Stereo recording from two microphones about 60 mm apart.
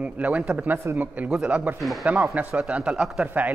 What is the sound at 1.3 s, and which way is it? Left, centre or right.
Speech, centre.